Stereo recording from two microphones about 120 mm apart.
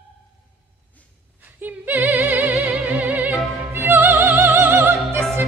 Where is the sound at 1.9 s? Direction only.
15° right (ahead or behind).